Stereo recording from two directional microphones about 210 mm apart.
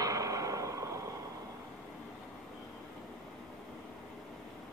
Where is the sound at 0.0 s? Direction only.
15° right (ahead or behind).